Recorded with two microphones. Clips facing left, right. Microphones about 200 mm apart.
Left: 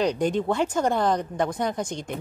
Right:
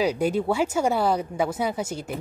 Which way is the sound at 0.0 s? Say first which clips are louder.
Even; 5° right (ahead or behind).